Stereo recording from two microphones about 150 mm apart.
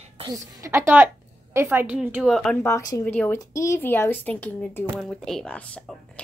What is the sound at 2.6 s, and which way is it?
Speech, 20° left (ahead or behind).